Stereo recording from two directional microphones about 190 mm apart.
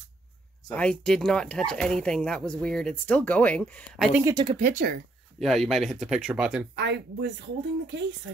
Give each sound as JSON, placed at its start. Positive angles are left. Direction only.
{"t": 0.7, "sound": "speech", "side_deg": 5}
{"t": 4.2, "sound": "speech", "side_deg": -20}
{"t": 4.6, "sound": "speech", "side_deg": -45}
{"t": 5.4, "sound": "speech", "side_deg": 0}
{"t": 6.7, "sound": "speech", "side_deg": -65}